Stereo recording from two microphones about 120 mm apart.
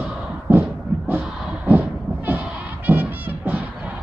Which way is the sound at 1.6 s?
15° right (ahead or behind).